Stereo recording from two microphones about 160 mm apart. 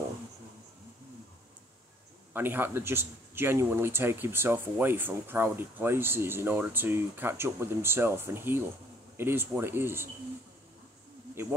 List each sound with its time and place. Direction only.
2.3 s a man's voice: 15° right (ahead or behind)